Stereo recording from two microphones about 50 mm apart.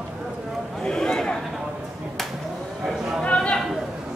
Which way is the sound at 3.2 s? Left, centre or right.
Centre.